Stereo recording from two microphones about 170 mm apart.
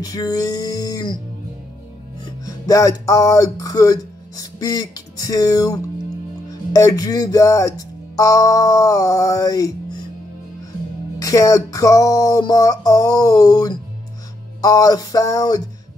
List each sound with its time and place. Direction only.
0.0 s music: 20° left (ahead or behind)
2.2 s music: 20° left (ahead or behind)
11.1 s music: 20° left (ahead or behind)